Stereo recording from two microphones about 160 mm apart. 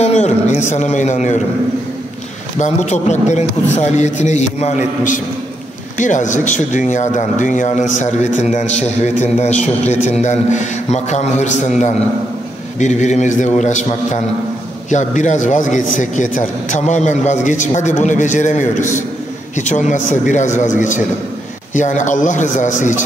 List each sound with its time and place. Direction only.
0.0 s a man's voice: 45° left (ahead or behind)
2.6 s a man's voice: 45° left (ahead or behind)
12.7 s a man's voice: 45° left (ahead or behind)
21.7 s a man's voice: 50° left (ahead or behind)